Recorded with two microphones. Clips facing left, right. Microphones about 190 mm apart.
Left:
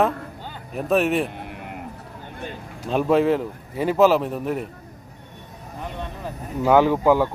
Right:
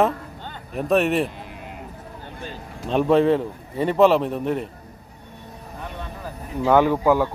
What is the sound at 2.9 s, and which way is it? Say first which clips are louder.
A man's voice: right 1 dB; 5° left (ahead or behind).